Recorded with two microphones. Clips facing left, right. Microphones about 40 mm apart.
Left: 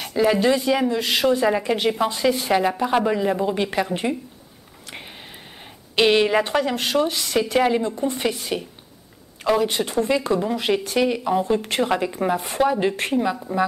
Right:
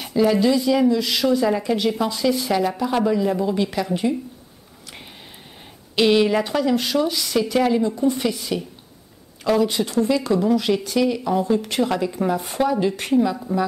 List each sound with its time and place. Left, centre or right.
0.4 s speech: left
2.8 s speech: centre
5.9 s speech: left
8.3 s speech: left
9.7 s speech: left